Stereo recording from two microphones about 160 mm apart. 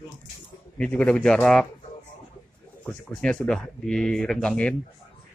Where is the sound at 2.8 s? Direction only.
5° left (ahead or behind).